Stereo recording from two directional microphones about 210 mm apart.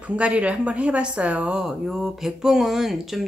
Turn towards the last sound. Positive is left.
turn(degrees=0)  # may be behind; listen again after turning